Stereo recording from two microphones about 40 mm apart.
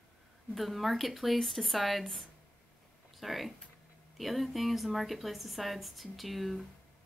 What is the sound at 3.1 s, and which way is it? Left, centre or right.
Speech, centre.